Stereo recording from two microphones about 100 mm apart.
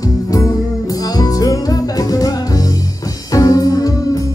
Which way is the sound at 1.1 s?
35° left (ahead or behind).